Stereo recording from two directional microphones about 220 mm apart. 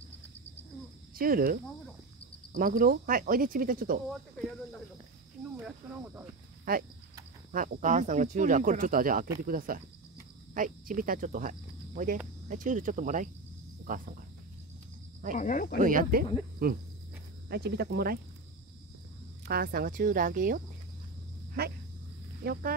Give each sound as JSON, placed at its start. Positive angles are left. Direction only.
{"t": 1.1, "sound": "speech", "side_deg": -40}
{"t": 6.6, "sound": "speech", "side_deg": -40}
{"t": 13.8, "sound": "cricket", "side_deg": -40}
{"t": 15.3, "sound": "speech", "side_deg": 35}
{"t": 15.8, "sound": "speech", "side_deg": -40}
{"t": 19.4, "sound": "speech", "side_deg": -45}